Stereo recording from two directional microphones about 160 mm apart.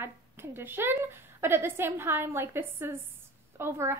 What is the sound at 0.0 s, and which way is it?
A woman's voice, 15° right (ahead or behind).